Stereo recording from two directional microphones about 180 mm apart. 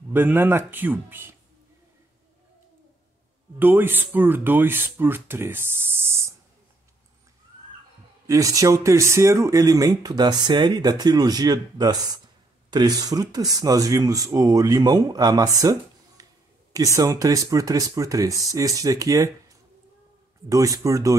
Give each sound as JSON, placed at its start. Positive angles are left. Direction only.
{"t": 0.1, "sound": "speech", "side_deg": -10}
{"t": 3.5, "sound": "speech", "side_deg": -10}
{"t": 8.3, "sound": "speech", "side_deg": -20}
{"t": 20.4, "sound": "speech", "side_deg": -20}